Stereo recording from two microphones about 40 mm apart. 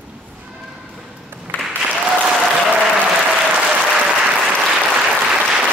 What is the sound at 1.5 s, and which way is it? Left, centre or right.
Applause, left.